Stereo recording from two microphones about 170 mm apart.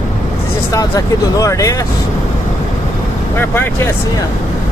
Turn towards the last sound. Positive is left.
turn(degrees=10)  # may be behind; listen again after turning